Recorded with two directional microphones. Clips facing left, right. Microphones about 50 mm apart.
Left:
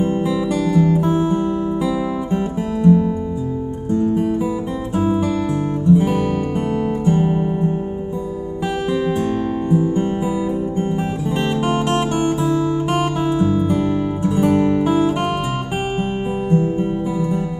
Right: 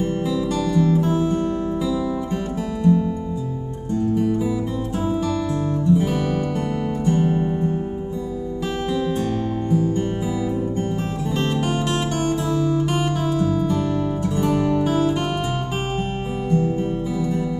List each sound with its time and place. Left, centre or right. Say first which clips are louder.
0.0 s music: left 3 dB; left
4.9 s music: left 5 dB; left
8.9 s music: left 3 dB; left
11.3 s music: left 3 dB; left